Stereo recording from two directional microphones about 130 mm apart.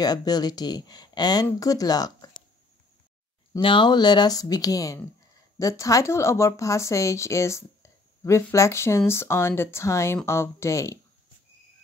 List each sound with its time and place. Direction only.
0.0 s speech: 30° left (ahead or behind)
3.5 s speech: 40° left (ahead or behind); by 11.0 s 25° left (ahead or behind)